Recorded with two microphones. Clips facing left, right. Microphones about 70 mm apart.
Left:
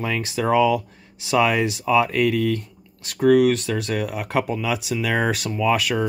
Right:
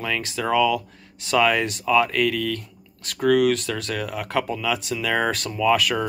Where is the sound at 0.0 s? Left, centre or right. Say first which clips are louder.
Left 2 dB; left.